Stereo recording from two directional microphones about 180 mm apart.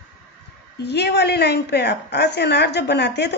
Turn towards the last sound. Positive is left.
turn(degrees=70)  # may be behind; listen again after turning